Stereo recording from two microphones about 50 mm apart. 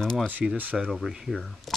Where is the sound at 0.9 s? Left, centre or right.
Centre.